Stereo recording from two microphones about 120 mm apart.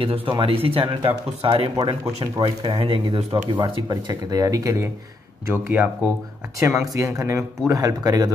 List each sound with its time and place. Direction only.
0.0 s speech: 50° right (ahead or behind)
2.3 s speech: 35° right (ahead or behind)
2.8 s speech: 50° right (ahead or behind); by 4.8 s 30° right (ahead or behind)
5.5 s speech: 20° right (ahead or behind)